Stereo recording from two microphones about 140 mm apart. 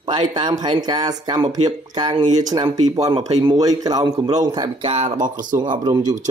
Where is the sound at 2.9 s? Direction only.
25° right (ahead or behind).